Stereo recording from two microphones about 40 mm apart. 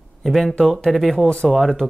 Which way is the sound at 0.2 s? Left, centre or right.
Centre.